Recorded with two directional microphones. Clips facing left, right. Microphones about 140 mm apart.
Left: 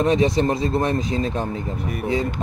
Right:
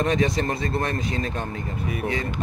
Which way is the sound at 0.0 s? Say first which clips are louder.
Left 4 dB; 30° left (ahead or behind).